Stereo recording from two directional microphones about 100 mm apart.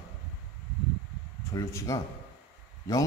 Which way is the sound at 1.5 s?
30° left (ahead or behind).